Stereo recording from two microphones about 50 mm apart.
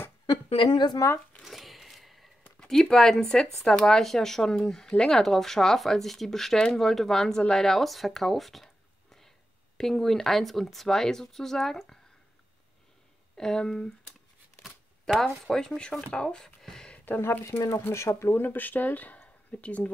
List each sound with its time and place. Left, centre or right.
1.0 s speech: left
1.4 s a sound: centre
2.6 s speech: centre
9.8 s speech: centre
13.4 s speech: centre
15.1 s speech: centre
17.2 s speech: left